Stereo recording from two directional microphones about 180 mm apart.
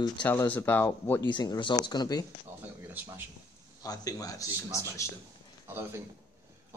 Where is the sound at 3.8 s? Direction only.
20° left (ahead or behind).